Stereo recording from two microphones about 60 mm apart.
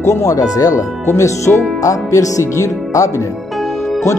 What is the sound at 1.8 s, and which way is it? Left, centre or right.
Speech, left.